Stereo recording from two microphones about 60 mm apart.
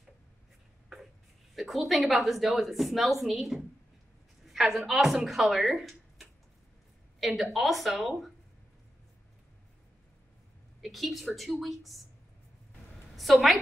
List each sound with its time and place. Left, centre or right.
1.5 s a woman's voice: centre
10.8 s speech: centre
13.1 s a woman's voice: centre